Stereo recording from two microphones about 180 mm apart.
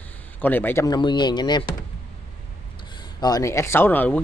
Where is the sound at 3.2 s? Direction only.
20° left (ahead or behind).